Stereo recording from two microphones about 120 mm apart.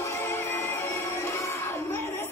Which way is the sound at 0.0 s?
20° left (ahead or behind).